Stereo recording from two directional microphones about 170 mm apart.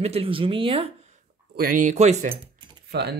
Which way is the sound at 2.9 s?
80° right.